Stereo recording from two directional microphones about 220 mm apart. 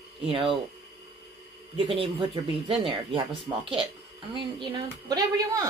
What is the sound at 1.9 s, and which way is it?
A woman's voice, 25° right (ahead or behind).